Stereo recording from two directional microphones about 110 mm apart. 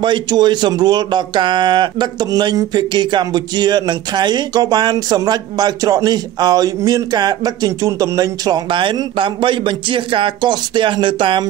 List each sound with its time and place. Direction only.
0.0 s speech: 45° right (ahead or behind)